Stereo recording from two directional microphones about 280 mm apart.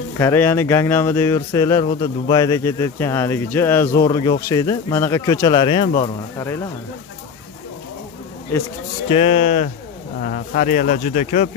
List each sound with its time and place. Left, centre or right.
0.2 s speech: centre
9.1 s speech: left